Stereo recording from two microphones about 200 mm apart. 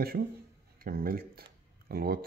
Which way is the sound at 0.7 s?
45° right (ahead or behind).